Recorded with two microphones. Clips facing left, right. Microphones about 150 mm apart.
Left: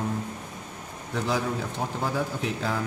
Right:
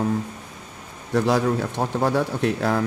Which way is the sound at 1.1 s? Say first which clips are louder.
Right 8 dB; 75° right (ahead or behind).